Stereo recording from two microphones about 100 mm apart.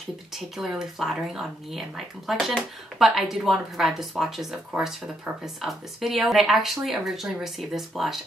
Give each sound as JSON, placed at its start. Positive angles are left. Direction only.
{"t": 0.6, "sound": "speech", "side_deg": 0}